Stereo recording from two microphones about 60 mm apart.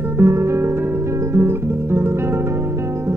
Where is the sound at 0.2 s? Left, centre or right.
Right.